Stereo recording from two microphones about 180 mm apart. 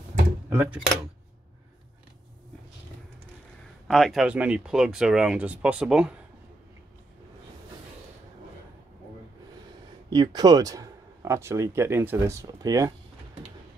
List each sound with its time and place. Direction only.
0.5 s speech: 10° right (ahead or behind)
3.8 s speech: centre (ahead or behind)
10.0 s speech: 25° right (ahead or behind)